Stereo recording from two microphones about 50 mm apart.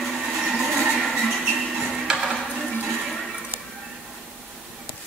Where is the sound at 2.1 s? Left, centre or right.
Centre.